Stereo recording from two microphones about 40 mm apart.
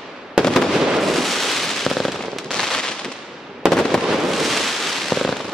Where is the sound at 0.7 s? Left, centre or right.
Centre.